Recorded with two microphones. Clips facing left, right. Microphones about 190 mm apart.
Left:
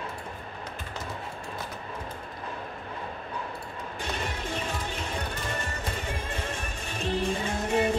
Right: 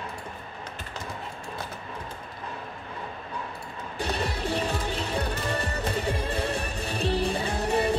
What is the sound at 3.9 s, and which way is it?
Music, 35° right (ahead or behind).